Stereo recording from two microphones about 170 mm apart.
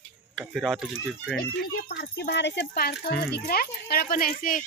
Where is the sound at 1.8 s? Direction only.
70° left (ahead or behind).